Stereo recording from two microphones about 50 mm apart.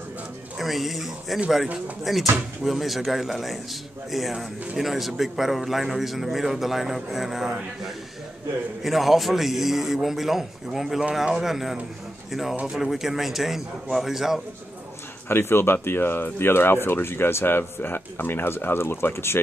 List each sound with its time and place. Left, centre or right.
0.6 s a man's voice: centre
15.2 s speech: left